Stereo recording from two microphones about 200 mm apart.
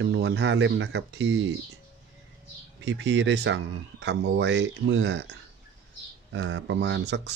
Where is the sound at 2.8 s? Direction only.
60° right (ahead or behind).